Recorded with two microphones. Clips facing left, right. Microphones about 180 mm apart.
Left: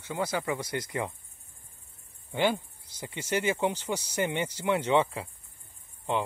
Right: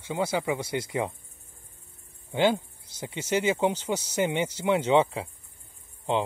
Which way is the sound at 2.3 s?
20° right (ahead or behind).